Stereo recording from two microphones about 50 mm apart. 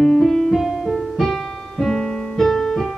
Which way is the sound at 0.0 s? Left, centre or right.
Centre.